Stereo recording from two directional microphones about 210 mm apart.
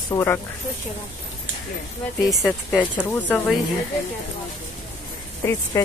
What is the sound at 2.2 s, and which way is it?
Speech, centre (ahead or behind).